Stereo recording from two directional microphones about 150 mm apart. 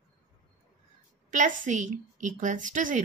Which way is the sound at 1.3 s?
55° right (ahead or behind).